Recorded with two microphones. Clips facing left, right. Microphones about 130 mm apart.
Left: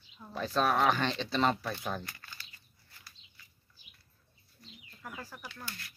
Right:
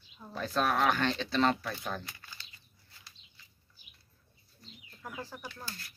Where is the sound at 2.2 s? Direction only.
20° right (ahead or behind).